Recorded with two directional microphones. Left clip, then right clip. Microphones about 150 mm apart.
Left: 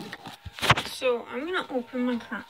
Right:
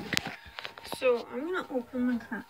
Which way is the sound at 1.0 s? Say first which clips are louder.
Left 1 dB; 5° left (ahead or behind).